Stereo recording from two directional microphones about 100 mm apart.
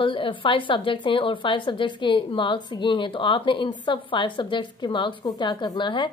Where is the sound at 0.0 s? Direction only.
55° left (ahead or behind).